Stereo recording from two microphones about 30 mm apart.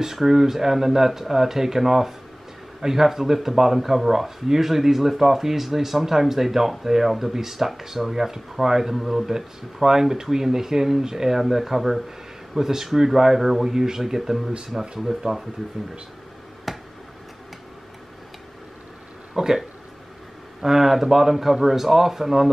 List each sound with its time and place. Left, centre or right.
0.0 s speech: centre
9.3 s speech: centre
13.7 s speech: centre
16.7 s finger snapping: centre
19.3 s speech: centre
20.6 s speech: centre